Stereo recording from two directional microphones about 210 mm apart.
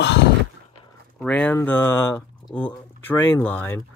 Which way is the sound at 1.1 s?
5° left (ahead or behind).